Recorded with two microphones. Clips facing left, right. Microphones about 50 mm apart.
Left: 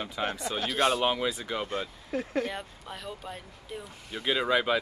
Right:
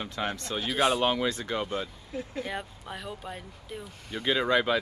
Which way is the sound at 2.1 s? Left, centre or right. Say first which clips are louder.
Left 9 dB; left.